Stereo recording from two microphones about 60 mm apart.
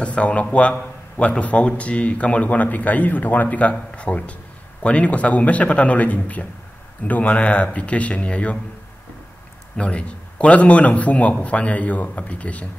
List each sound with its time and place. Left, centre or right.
0.0 s speech: left
9.8 s speech: centre